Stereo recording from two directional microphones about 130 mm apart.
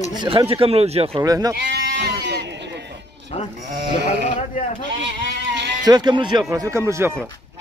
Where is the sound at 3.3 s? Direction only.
50° left (ahead or behind).